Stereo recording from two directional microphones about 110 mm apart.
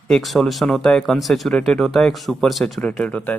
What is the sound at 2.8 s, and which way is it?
Speech, 10° left (ahead or behind).